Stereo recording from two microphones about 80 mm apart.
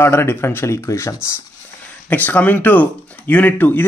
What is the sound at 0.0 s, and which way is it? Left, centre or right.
Speech, left.